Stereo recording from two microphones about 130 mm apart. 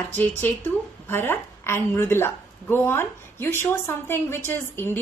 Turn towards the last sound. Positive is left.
turn(degrees=15)  # may be behind; listen again after turning